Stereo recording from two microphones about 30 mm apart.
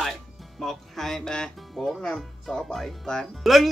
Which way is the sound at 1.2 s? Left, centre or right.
Left.